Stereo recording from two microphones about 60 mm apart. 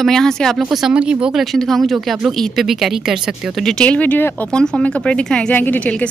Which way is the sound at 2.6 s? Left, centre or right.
Centre.